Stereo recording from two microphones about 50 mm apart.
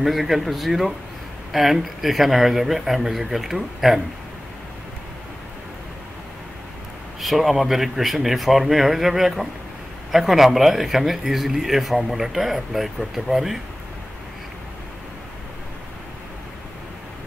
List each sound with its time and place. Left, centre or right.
0.0 s speech: centre
7.2 s speech: centre